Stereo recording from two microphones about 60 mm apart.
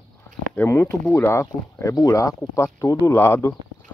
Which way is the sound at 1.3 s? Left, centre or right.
Left.